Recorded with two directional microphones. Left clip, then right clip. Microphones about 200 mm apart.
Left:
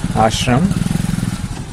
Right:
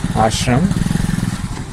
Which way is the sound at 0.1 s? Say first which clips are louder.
Left 1 dB; 10° left (ahead or behind).